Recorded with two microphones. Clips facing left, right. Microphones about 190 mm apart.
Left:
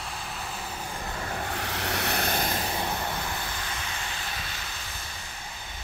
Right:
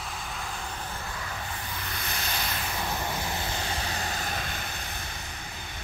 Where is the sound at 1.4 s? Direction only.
75° left (ahead or behind); by 2.5 s 55° left (ahead or behind).